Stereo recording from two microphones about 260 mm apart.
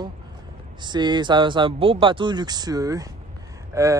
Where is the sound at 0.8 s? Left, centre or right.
Centre.